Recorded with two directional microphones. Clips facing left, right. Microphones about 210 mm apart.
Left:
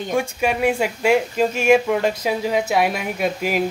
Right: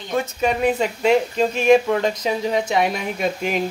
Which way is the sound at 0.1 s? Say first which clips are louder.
Right 1 dB; 10° left (ahead or behind).